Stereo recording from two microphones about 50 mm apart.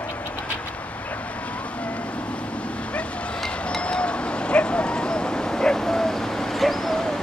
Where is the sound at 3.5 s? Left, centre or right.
Left; by 7.2 s centre.